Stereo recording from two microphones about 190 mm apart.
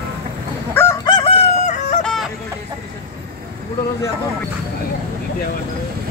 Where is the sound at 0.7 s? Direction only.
15° left (ahead or behind); by 1.9 s 40° left (ahead or behind).